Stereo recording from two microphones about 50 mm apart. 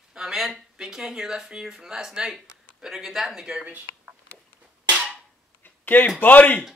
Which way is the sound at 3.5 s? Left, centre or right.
Centre.